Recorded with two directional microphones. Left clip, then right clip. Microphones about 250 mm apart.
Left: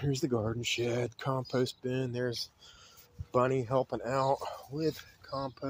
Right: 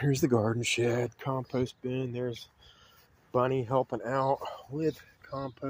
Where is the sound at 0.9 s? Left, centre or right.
Centre.